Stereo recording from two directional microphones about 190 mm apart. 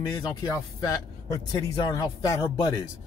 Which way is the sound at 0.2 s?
20° left (ahead or behind).